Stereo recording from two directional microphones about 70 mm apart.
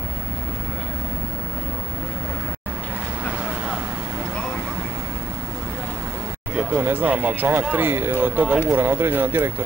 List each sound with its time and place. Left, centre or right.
6.7 s speech: right